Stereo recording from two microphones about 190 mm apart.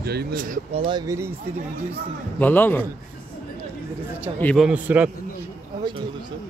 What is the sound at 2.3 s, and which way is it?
Speech, 10° left (ahead or behind).